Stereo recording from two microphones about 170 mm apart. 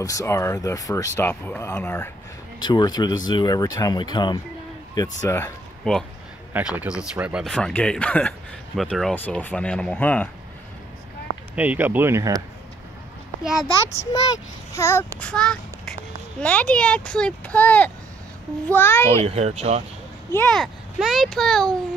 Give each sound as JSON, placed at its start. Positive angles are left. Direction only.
{"t": 0.0, "sound": "speech", "side_deg": 20}
{"t": 2.6, "sound": "speech", "side_deg": 25}
{"t": 5.9, "sound": "speech", "side_deg": 5}
{"t": 6.5, "sound": "speech", "side_deg": -10}
{"t": 11.5, "sound": "speech", "side_deg": -10}
{"t": 13.4, "sound": "a child's voice", "side_deg": -5}
{"t": 14.7, "sound": "a child's voice", "side_deg": 15}
{"t": 19.2, "sound": "speech", "side_deg": -40}
{"t": 20.3, "sound": "speech", "side_deg": 5}